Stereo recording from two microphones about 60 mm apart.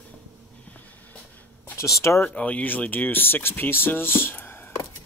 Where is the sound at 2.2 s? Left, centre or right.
Left.